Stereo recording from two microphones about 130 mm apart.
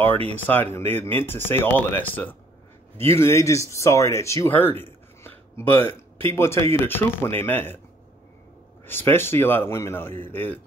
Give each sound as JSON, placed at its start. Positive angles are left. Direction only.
{"t": 0.5, "sound": "speech", "side_deg": 15}
{"t": 8.8, "sound": "speech", "side_deg": 15}